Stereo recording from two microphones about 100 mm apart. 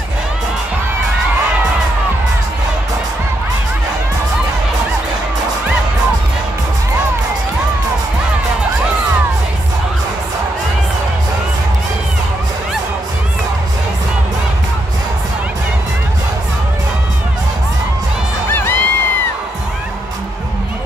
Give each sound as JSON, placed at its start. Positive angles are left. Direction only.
{"t": 18.5, "sound": "crowd", "side_deg": 25}